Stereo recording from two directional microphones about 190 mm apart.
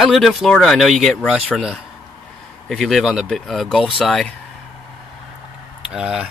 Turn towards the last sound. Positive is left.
turn(degrees=-5)  # may be behind; listen again after turning